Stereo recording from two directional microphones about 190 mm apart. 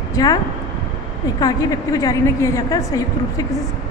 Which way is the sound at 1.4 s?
20° left (ahead or behind).